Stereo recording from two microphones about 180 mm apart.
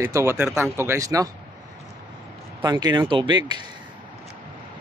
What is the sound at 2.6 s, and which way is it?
Speech, 20° right (ahead or behind).